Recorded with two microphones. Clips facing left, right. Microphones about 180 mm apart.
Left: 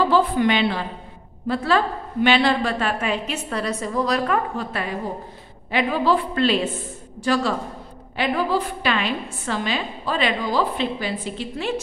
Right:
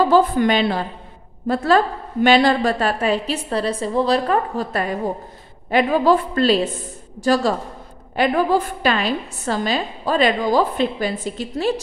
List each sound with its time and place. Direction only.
0.1 s a woman's voice: 40° right (ahead or behind)